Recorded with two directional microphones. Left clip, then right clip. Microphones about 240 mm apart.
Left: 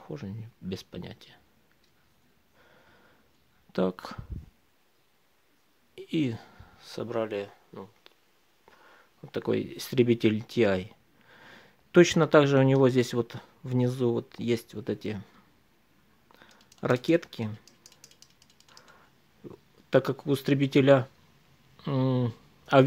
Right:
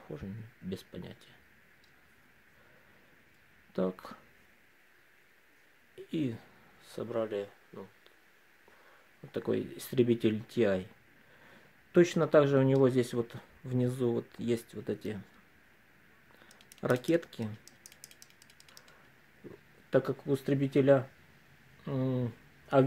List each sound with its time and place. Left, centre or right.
0.0 s speech: left
3.7 s speech: left
5.9 s speech: left
9.2 s speech: left
16.3 s a sound: left
19.9 s speech: left